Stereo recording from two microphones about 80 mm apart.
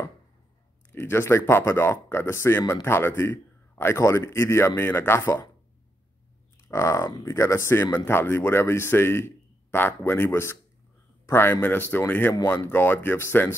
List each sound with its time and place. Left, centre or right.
0.9 s a man's voice: left
6.7 s a man's voice: left